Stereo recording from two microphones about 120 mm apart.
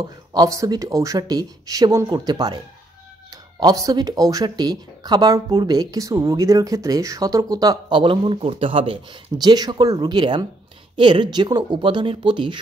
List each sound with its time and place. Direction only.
0.0 s speech: 30° right (ahead or behind)